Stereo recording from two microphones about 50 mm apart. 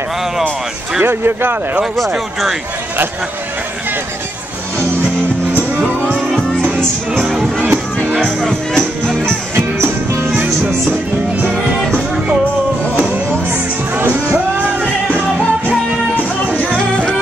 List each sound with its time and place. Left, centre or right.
1.0 s speech: right
7.2 s music: centre
8.7 s music: centre
10.4 s music: right
14.3 s music: right